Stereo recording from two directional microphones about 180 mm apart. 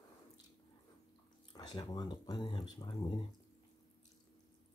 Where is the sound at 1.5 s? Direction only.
25° left (ahead or behind).